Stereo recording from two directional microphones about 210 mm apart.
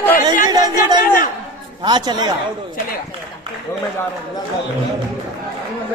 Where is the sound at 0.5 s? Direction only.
20° right (ahead or behind).